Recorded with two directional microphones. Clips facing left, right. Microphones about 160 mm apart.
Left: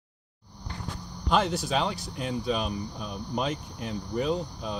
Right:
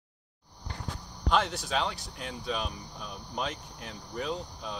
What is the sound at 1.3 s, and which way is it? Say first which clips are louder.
Speech: left 3 dB; 5° left (ahead or behind).